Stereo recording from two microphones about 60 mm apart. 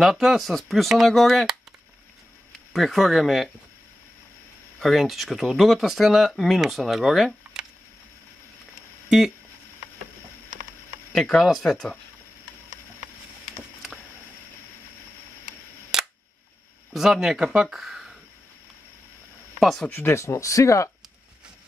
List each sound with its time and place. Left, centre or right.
0.0 s speech: centre
2.7 s speech: centre
4.7 s speech: centre
11.1 s speech: centre
15.9 s camera: centre
16.9 s speech: centre
19.9 s speech: left